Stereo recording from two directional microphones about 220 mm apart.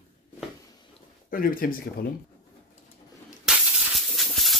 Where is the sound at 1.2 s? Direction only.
40° left (ahead or behind).